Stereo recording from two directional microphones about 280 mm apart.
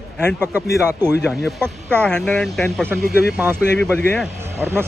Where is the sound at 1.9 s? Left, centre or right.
Centre.